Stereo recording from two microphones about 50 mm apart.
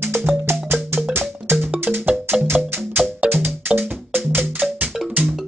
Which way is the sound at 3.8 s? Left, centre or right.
Right.